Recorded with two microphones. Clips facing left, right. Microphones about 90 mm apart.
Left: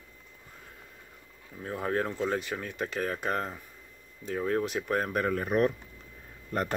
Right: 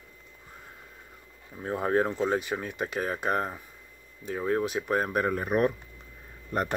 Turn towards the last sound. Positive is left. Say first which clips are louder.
# right 2 dB
turn(degrees=-10)  # may be behind; listen again after turning